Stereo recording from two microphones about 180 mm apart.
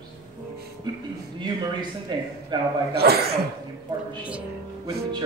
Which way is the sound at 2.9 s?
60° right (ahead or behind).